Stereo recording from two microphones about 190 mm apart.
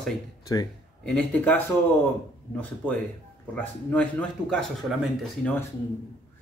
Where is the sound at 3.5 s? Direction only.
10° left (ahead or behind).